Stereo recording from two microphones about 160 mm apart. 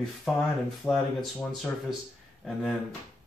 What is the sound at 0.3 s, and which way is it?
Speech, centre (ahead or behind).